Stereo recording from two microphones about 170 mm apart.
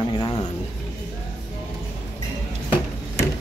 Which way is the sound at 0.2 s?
25° left (ahead or behind).